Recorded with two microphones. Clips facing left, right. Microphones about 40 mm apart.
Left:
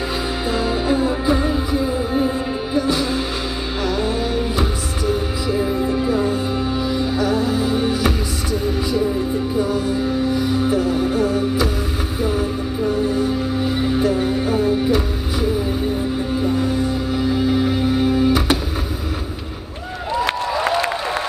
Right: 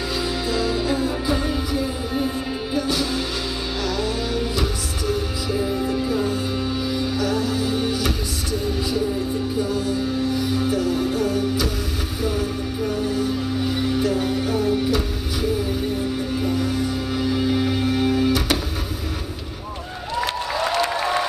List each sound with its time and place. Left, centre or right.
0.5 s music: left
9.6 s music: left
17.1 s music: centre
20.2 s a sound: left